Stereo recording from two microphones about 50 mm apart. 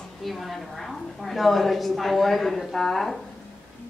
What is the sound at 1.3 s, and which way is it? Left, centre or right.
A woman's voice, centre.